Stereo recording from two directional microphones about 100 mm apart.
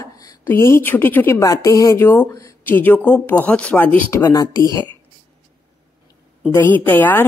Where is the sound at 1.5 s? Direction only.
35° left (ahead or behind).